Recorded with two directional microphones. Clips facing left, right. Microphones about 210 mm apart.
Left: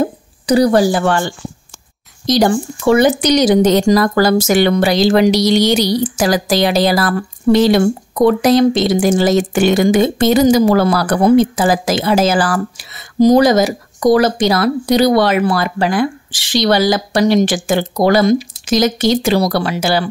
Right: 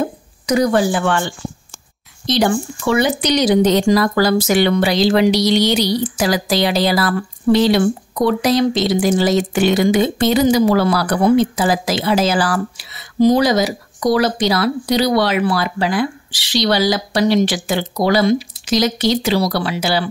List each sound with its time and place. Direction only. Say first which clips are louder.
0.0 s speech: left 4 dB; 35° left (ahead or behind)